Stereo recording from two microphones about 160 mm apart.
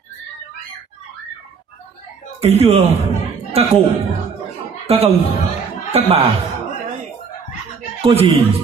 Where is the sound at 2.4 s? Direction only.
40° right (ahead or behind).